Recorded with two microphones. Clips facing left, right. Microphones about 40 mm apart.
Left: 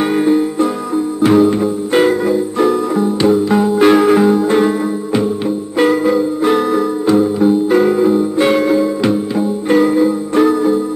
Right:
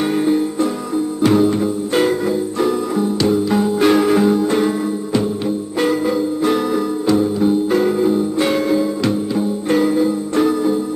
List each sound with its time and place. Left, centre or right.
0.1 s music: centre